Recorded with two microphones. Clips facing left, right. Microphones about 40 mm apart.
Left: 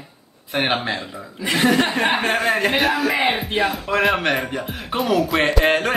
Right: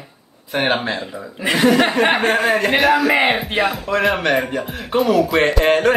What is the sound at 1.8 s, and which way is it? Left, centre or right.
Music, right.